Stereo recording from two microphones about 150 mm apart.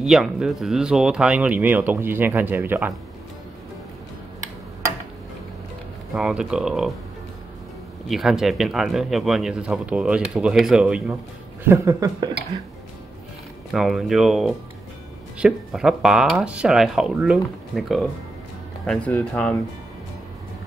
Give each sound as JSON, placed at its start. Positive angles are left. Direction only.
{"t": 0.0, "sound": "speech", "side_deg": -5}
{"t": 6.1, "sound": "speech", "side_deg": -5}
{"t": 8.1, "sound": "speech", "side_deg": 0}
{"t": 13.7, "sound": "speech", "side_deg": 0}